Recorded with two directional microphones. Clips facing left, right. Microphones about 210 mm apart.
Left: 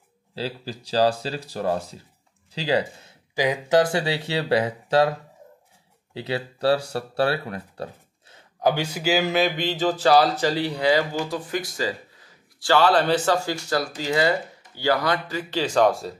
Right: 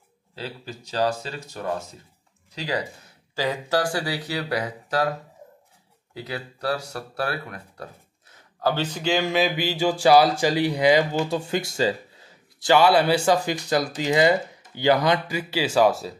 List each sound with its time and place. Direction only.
0.3 s speech: 30° left (ahead or behind)
3.3 s speech: 15° left (ahead or behind)
6.1 s speech: 30° left (ahead or behind)
8.5 s speech: 15° left (ahead or behind); by 16.2 s centre (ahead or behind)